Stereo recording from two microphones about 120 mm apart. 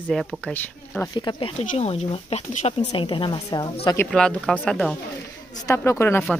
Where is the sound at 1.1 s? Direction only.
40° left (ahead or behind).